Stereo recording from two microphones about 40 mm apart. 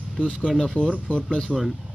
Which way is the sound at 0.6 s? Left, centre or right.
Centre.